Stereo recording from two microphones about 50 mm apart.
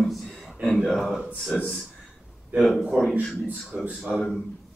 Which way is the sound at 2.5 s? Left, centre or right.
Centre.